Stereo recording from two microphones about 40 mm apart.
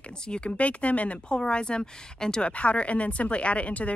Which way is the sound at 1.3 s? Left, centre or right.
Left.